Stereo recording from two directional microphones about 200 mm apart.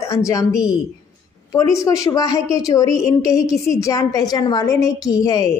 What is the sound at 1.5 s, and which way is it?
A woman's voice, 15° left (ahead or behind).